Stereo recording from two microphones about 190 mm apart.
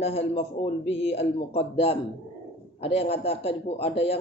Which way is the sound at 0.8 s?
75° left (ahead or behind).